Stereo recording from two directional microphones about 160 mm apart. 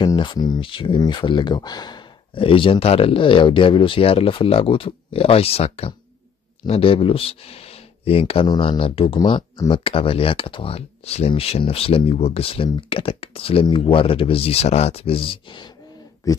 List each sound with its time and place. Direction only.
0.0 s speech: 30° left (ahead or behind)